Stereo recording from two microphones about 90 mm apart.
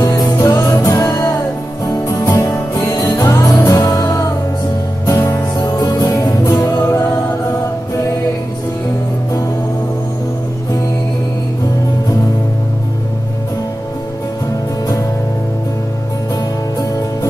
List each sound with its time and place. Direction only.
0.0 s music: 40° left (ahead or behind)